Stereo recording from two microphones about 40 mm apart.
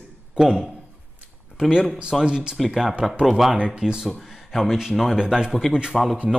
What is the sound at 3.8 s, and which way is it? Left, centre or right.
Speech, centre.